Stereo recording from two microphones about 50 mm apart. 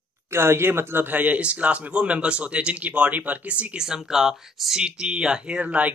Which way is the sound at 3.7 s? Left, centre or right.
Centre.